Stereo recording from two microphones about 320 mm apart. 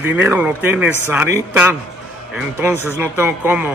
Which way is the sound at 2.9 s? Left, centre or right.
Centre.